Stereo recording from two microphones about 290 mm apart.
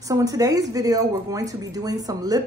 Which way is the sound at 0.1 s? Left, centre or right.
Centre.